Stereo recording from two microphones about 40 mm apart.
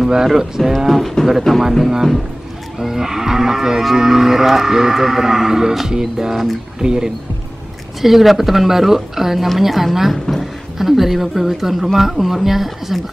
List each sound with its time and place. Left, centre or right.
0.0 s speech: centre
0.7 s a woman's voice: centre
8.0 s speech: centre
10.1 s speech: centre
10.8 s a woman's voice: centre